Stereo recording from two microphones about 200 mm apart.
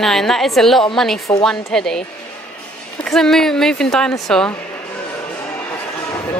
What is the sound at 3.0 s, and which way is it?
A woman's voice, centre (ahead or behind).